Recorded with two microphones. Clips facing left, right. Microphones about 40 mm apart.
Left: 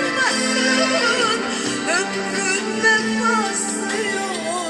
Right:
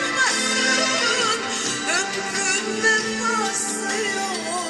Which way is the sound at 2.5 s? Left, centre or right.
Left.